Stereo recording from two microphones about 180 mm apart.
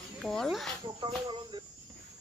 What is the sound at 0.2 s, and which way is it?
Speech, centre (ahead or behind).